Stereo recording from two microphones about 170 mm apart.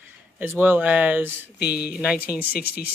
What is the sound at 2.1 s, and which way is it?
Speech, 60° left (ahead or behind).